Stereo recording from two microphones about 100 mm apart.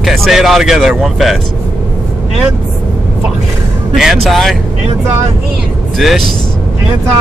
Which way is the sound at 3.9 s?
5° right (ahead or behind).